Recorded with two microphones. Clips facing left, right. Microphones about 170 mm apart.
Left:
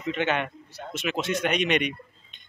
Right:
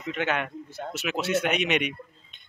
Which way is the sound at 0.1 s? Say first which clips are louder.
Left 2 dB; 5° right (ahead or behind).